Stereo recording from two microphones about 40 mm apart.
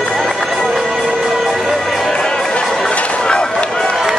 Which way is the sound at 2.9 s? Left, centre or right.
Left.